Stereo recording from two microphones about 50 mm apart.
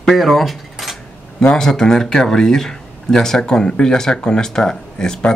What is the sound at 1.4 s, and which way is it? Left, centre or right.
Speech, centre.